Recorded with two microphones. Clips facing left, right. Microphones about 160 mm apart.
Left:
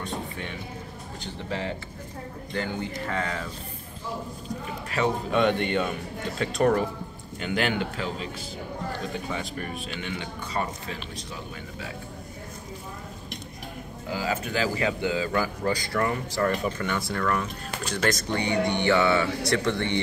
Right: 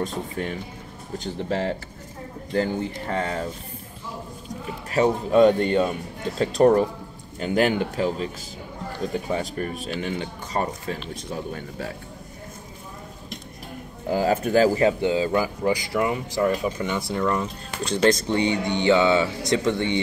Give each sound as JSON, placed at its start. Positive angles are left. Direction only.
{"t": 0.0, "sound": "speech", "side_deg": -40}
{"t": 4.9, "sound": "speech", "side_deg": -40}
{"t": 9.3, "sound": "speech", "side_deg": -40}
{"t": 14.0, "sound": "speech", "side_deg": -45}
{"t": 14.8, "sound": "speech", "side_deg": -30}